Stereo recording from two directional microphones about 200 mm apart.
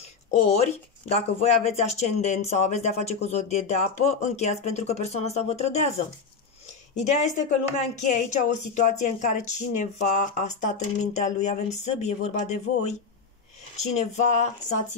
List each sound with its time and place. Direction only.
0.3 s speech: 35° left (ahead or behind)
7.0 s speech: 35° left (ahead or behind)